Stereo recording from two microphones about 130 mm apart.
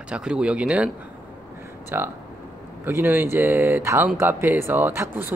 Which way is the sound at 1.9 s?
15° right (ahead or behind).